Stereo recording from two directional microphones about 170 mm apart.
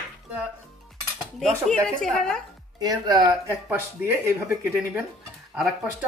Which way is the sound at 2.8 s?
20° right (ahead or behind).